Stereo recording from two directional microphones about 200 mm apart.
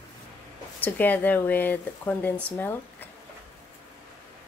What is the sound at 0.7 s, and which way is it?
Speech, 10° left (ahead or behind).